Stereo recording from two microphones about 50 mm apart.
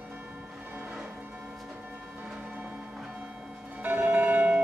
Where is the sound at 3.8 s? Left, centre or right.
Right.